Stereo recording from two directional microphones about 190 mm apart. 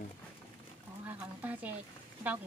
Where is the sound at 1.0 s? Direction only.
10° right (ahead or behind).